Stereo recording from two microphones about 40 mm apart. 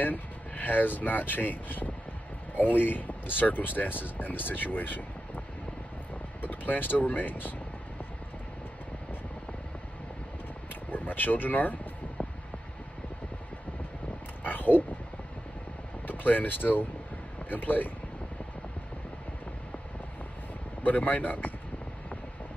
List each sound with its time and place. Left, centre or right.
0.0 s speech: left
6.4 s speech: left
10.7 s speech: left
12.2 s mechanical fan: left
14.4 s a sound: left
16.1 s speech: left
20.8 s speech: left